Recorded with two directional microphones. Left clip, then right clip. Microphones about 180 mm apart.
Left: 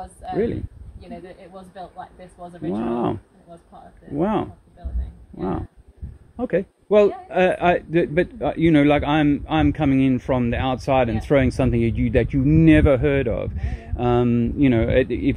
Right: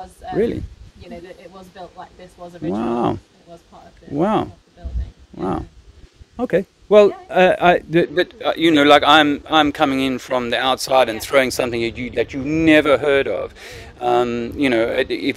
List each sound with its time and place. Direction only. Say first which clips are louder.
0.0 s speech: right 3 dB; 5° left (ahead or behind)
2.7 s a man's voice: right 4 dB; 25° right (ahead or behind)
4.2 s a man's voice: right 4 dB; 25° right (ahead or behind)
6.3 s a man's voice: right 4 dB; 25° right (ahead or behind)